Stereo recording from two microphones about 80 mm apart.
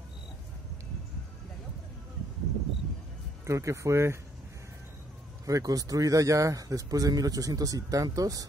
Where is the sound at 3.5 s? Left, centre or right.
Right.